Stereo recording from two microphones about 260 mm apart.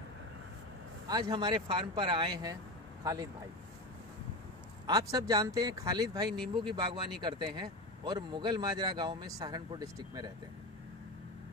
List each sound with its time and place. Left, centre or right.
1.0 s speech: centre
4.8 s speech: centre